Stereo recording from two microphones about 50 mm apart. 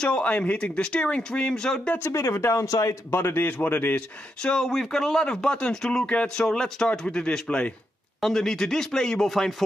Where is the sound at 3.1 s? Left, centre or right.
Left.